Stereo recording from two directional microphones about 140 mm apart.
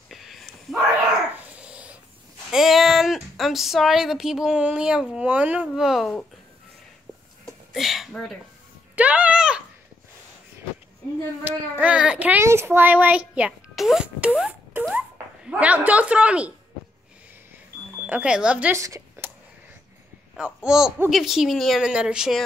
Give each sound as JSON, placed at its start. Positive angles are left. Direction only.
{"t": 0.1, "sound": "whispering", "side_deg": 0}
{"t": 1.3, "sound": "dog", "side_deg": -10}
{"t": 2.5, "sound": "speech", "side_deg": 0}
{"t": 7.4, "sound": "a sound", "side_deg": 0}
{"t": 8.9, "sound": "sheep", "side_deg": -10}
{"t": 11.4, "sound": "a child's voice", "side_deg": -10}
{"t": 13.3, "sound": "music", "side_deg": -5}
{"t": 14.9, "sound": "speech", "side_deg": -5}
{"t": 18.0, "sound": "a child's voice", "side_deg": -10}
{"t": 18.8, "sound": "a sound", "side_deg": -20}
{"t": 20.3, "sound": "speech", "side_deg": -5}